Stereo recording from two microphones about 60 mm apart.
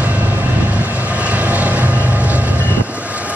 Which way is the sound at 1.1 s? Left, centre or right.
Right.